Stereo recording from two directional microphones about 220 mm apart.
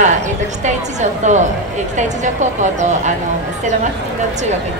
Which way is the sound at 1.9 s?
35° right (ahead or behind).